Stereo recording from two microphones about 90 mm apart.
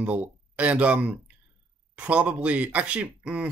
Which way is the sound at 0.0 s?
15° right (ahead or behind).